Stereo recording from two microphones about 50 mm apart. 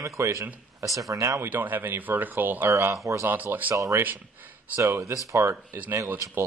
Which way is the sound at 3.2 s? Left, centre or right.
Right.